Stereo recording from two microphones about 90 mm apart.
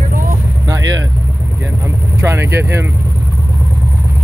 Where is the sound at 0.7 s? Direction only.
40° right (ahead or behind).